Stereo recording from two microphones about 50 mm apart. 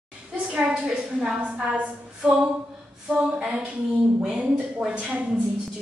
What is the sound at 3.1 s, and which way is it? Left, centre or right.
Speech, centre.